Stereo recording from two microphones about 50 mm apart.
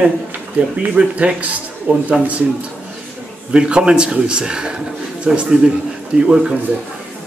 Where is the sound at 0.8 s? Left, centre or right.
Right.